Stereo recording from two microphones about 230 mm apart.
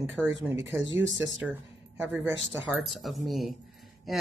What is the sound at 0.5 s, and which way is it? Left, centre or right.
Speech, centre.